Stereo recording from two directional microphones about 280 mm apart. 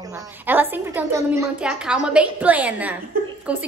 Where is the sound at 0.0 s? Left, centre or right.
Centre.